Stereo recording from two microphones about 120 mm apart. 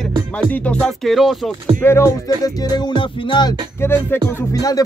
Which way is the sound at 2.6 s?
35° left (ahead or behind).